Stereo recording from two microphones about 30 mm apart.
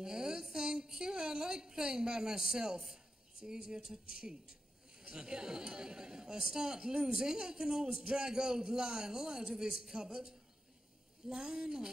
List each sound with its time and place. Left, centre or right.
0.0 s a man's voice: right